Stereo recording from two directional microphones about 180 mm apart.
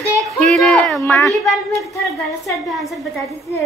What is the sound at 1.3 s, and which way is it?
A woman's voice, centre (ahead or behind).